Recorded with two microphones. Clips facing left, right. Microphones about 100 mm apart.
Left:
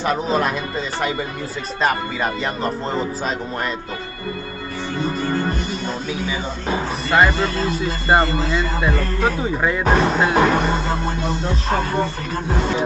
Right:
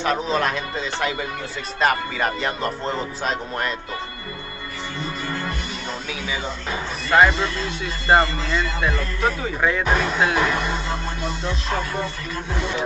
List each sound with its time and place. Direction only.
0.0 s speech: 5° left (ahead or behind)
7.1 s speech: 5° left (ahead or behind)
9.6 s speech: 5° left (ahead or behind)
9.8 s speech: 40° left (ahead or behind)